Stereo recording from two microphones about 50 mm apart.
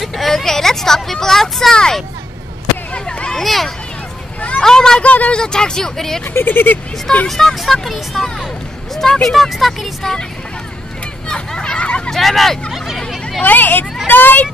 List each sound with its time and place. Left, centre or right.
0.0 s speech: centre
2.9 s a sound: left
3.3 s speech: centre
4.4 s speech: left
4.6 s speech: centre
5.0 s speech: left
5.3 s speech: centre
6.3 s speech: left
7.2 s speech: centre
11.2 s a sound: centre
12.1 s speech: centre
12.7 s hubbub: centre
13.4 s speech: left